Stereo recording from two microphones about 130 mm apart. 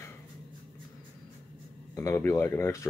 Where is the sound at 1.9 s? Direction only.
20° left (ahead or behind).